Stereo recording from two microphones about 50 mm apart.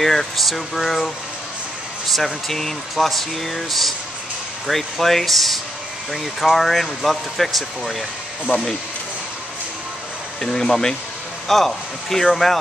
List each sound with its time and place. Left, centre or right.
0.0 s speech: centre
2.4 s speech: centre
8.5 s speech: centre
10.4 s speech: centre